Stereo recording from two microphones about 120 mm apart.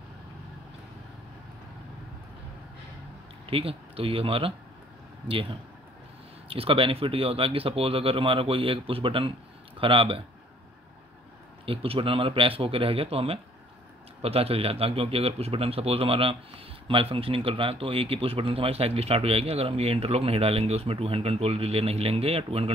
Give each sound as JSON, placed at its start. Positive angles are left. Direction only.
{"t": 3.4, "sound": "speech", "side_deg": -50}
{"t": 11.6, "sound": "speech", "side_deg": -50}